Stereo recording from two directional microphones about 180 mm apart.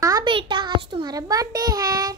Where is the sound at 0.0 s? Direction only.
25° right (ahead or behind).